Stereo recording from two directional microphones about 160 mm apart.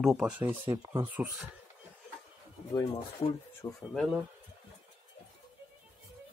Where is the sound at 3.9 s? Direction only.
Centre (ahead or behind).